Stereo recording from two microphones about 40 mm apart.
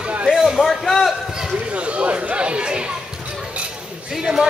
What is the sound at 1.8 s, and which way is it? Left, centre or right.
Chatter, right.